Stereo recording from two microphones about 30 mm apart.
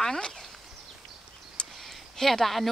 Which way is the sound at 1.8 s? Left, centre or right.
Centre.